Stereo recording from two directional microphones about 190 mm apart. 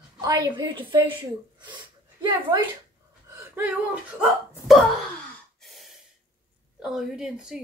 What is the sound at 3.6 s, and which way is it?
Speech, 5° right (ahead or behind).